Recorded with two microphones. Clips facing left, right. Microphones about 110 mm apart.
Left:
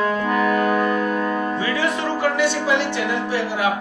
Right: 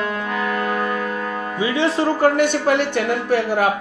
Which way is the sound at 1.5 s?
20° right (ahead or behind).